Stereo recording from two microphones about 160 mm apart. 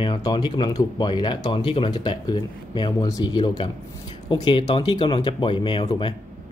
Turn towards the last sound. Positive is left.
turn(degrees=35)  # may be behind; listen again after turning